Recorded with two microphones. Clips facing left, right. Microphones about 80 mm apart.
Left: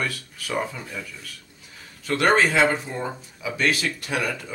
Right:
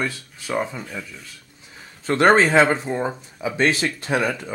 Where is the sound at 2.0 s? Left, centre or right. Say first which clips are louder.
Right 4 dB; right.